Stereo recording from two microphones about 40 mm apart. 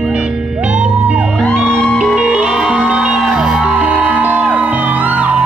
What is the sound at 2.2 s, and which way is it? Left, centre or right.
Music, right.